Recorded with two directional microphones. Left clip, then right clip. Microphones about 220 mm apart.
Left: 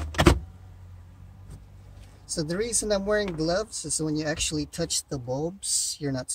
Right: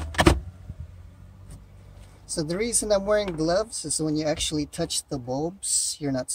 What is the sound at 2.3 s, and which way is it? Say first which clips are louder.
Speech: right 1 dB; 15° right (ahead or behind).